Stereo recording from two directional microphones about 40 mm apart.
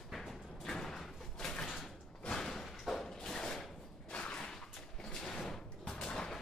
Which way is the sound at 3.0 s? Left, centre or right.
Centre.